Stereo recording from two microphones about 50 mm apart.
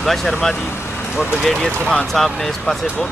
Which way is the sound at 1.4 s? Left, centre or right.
Centre.